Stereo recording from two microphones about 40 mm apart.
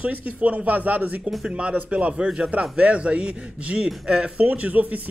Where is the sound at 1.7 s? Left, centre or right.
Right.